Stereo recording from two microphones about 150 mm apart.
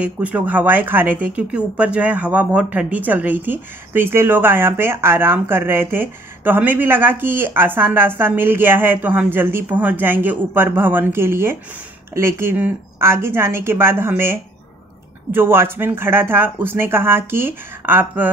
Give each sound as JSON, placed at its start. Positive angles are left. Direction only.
{"t": 0.0, "sound": "speech", "side_deg": -10}